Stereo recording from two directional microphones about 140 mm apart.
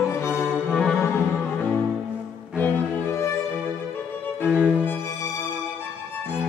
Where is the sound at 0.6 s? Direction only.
10° left (ahead or behind).